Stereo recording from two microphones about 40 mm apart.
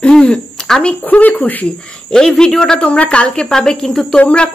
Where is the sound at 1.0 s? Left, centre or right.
Left.